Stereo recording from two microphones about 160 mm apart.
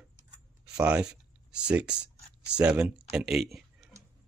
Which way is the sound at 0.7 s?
5° right (ahead or behind).